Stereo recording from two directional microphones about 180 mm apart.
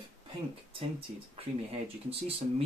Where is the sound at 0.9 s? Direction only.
30° right (ahead or behind).